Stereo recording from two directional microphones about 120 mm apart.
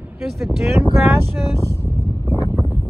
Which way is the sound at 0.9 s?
20° right (ahead or behind).